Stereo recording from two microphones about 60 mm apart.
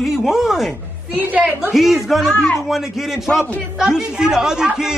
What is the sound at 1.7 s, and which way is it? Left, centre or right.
A man's voice, centre.